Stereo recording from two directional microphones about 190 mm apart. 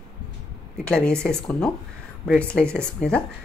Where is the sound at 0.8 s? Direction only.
5° left (ahead or behind).